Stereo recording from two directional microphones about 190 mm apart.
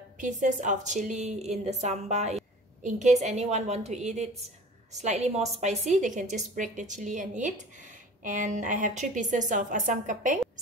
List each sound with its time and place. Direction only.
0.2 s a woman's voice: 45° right (ahead or behind)